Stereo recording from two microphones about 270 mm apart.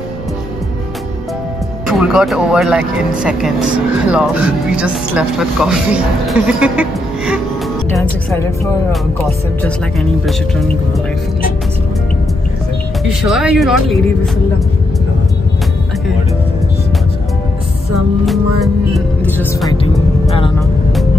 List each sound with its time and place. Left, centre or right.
1.9 s speech: centre
7.9 s speech: centre
13.2 s speech: centre
18.2 s music: centre
19.8 s music: centre